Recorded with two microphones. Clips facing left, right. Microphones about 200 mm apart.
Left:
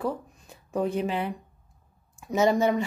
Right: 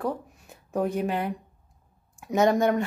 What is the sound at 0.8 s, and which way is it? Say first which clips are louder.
Speech: even; centre (ahead or behind).